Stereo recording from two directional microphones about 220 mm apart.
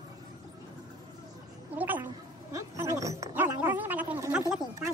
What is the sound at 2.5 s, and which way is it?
Roaring cats, 15° right (ahead or behind).